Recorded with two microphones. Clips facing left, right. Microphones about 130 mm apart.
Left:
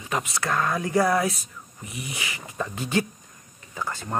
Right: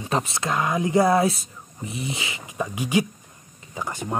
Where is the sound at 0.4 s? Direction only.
15° right (ahead or behind).